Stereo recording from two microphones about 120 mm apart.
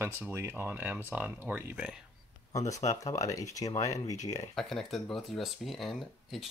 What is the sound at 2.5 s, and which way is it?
Speech, 25° left (ahead or behind).